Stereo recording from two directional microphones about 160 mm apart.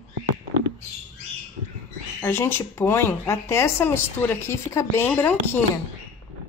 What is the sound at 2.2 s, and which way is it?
Speech, 15° left (ahead or behind).